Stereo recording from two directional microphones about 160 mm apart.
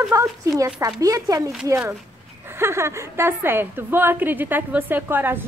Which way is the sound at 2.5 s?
15° right (ahead or behind).